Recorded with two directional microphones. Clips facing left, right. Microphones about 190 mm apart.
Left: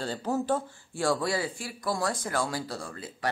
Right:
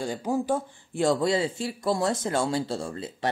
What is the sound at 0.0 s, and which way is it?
Speech, 15° right (ahead or behind).